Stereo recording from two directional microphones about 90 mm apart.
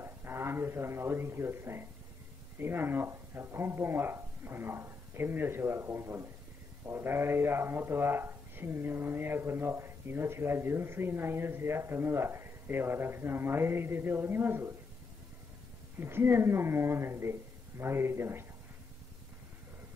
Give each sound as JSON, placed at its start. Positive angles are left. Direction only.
{"t": 0.0, "sound": "speech", "side_deg": -30}
{"t": 16.0, "sound": "speech", "side_deg": -25}